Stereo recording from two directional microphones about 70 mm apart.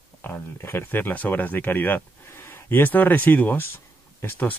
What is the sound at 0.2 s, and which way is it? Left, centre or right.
Speech, left.